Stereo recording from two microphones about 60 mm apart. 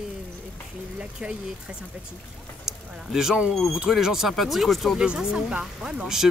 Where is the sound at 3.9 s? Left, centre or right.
Centre.